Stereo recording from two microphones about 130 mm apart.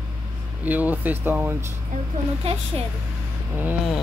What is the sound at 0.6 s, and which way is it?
Speech, 15° right (ahead or behind).